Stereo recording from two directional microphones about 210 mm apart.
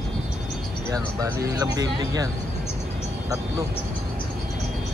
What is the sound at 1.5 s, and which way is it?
Speech, 15° right (ahead or behind).